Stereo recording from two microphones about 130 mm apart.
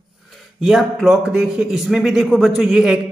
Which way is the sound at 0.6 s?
Centre (ahead or behind).